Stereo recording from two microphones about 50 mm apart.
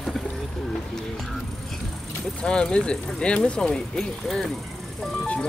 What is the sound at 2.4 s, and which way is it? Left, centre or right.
Speech, centre.